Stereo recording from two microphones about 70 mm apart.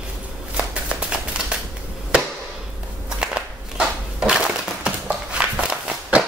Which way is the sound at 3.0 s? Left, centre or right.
Centre.